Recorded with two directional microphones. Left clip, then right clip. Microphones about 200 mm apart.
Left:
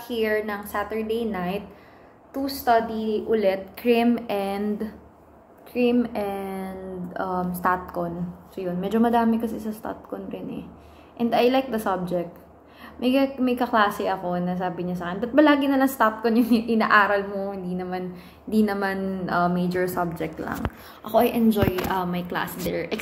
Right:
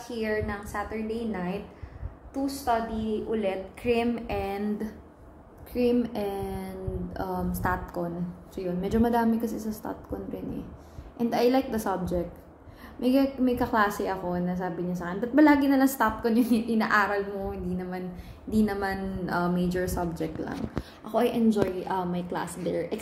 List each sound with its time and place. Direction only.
0.2 s a woman's voice: centre (ahead or behind)
2.4 s a woman's voice: 15° left (ahead or behind); by 4.8 s 5° right (ahead or behind)
5.8 s a woman's voice: 20° right (ahead or behind)